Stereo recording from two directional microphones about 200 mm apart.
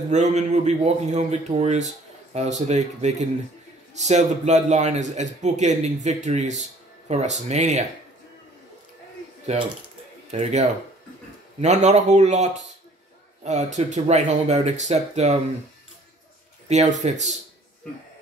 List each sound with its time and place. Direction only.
0.1 s a man's voice: 35° right (ahead or behind)
9.5 s a man's voice: 35° right (ahead or behind)
16.6 s a man's voice: 35° right (ahead or behind)